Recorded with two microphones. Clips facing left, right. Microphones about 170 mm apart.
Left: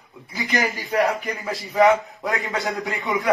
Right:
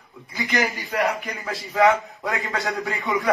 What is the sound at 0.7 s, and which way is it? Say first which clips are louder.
Speech: left 3 dB; 40° left (ahead or behind).